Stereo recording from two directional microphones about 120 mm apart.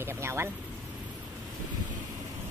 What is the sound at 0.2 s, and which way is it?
Speech, 20° right (ahead or behind).